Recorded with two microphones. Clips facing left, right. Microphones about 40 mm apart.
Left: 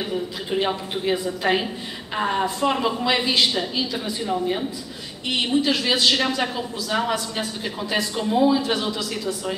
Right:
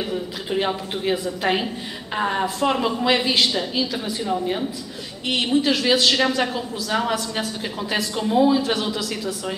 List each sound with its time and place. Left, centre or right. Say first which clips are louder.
0.0 s a woman's voice: even; centre